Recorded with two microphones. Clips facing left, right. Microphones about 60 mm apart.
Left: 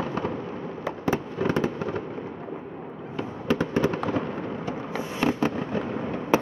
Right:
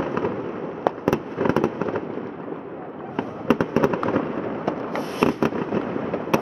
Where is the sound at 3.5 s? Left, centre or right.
Right.